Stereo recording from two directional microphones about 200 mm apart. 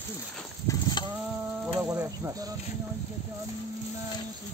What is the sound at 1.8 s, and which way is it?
Cricket, 15° right (ahead or behind).